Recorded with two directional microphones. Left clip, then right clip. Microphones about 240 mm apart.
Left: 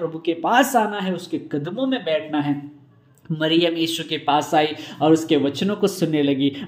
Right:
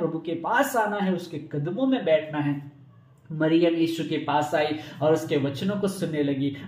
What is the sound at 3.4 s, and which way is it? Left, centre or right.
A man's voice, left.